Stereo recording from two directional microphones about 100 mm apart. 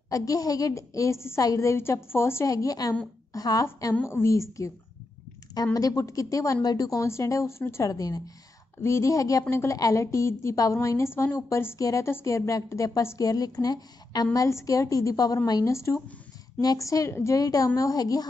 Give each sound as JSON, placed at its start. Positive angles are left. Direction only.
{"t": 0.1, "sound": "a woman's voice", "side_deg": 35}
{"t": 4.0, "sound": "a woman's voice", "side_deg": 25}